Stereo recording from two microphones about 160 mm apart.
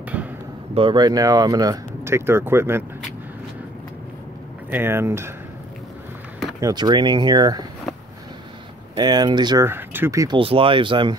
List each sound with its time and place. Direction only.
0.1 s a sound: 10° right (ahead or behind)
0.7 s speech: 30° right (ahead or behind); by 2.8 s 15° right (ahead or behind)
4.6 s speech: 15° right (ahead or behind)
6.6 s speech: 25° right (ahead or behind)
8.9 s speech: 25° right (ahead or behind)
9.7 s speech: 15° right (ahead or behind)
10.3 s speech: 35° right (ahead or behind)